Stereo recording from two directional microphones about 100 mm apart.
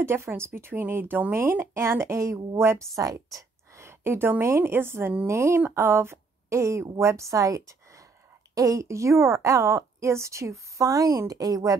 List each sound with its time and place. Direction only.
0.0 s speech: 25° right (ahead or behind)
3.0 s a woman's voice: 35° right (ahead or behind)